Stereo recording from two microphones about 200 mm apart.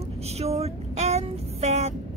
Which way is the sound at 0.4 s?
30° right (ahead or behind).